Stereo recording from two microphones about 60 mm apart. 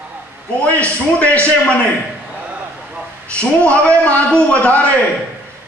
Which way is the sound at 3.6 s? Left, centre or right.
Left.